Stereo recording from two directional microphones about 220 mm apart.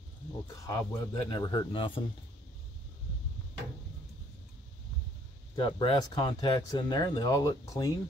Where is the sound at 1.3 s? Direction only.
20° left (ahead or behind).